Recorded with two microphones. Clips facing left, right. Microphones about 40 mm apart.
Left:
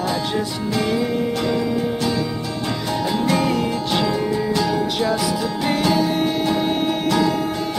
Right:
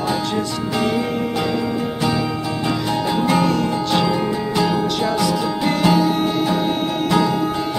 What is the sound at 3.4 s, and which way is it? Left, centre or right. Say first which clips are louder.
Music: right 2 dB; centre.